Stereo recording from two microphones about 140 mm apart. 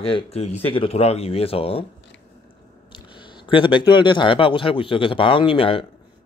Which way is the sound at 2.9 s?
35° left (ahead or behind).